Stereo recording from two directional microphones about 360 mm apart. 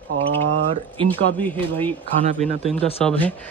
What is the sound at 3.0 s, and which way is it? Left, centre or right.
Speech, centre.